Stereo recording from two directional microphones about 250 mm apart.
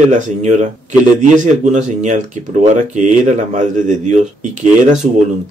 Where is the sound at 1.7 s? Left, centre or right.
Right.